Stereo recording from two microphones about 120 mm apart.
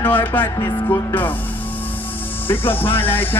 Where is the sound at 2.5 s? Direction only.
15° left (ahead or behind).